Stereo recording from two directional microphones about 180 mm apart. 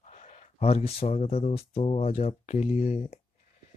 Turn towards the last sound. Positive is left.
turn(degrees=35)  # may be behind; listen again after turning